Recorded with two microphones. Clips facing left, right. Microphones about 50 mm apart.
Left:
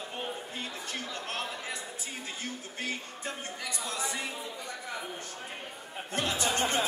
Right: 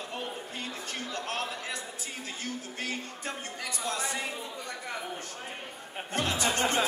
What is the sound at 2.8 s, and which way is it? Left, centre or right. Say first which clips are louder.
Speech: left 2 dB; right.